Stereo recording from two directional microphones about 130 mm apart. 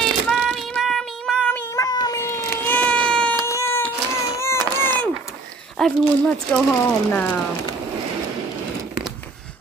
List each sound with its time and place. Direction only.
0.0 s child singing: centre (ahead or behind)
1.8 s cat: 30° left (ahead or behind); by 3.3 s 10° left (ahead or behind)
3.4 s cat: 20° left (ahead or behind)
4.2 s a sound: 20° left (ahead or behind)
5.8 s speech: 5° left (ahead or behind)